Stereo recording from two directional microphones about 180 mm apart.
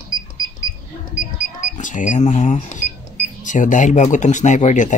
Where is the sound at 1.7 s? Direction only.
45° left (ahead or behind).